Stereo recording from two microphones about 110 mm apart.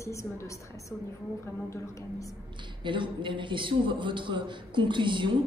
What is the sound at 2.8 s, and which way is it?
A man's voice, 45° right (ahead or behind).